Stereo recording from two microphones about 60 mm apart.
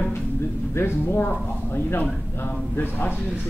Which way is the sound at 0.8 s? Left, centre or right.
Left.